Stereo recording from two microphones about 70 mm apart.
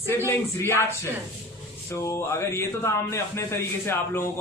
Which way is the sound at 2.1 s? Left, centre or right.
Left.